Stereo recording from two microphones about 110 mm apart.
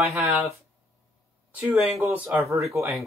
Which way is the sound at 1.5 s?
5° right (ahead or behind).